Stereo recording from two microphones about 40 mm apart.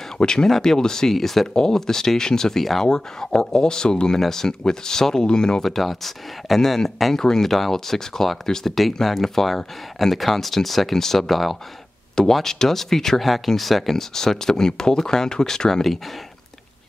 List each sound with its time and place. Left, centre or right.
0.2 s speech: centre
2.6 s speech: centre
2.9 s speech: centre
5.6 s speech: centre